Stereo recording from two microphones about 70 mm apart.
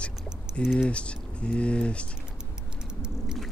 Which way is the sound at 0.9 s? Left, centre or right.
Centre.